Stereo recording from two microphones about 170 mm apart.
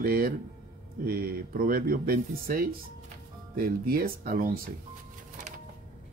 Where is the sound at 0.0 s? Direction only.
60° right (ahead or behind).